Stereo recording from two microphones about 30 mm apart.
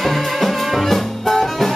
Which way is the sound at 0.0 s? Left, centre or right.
Centre.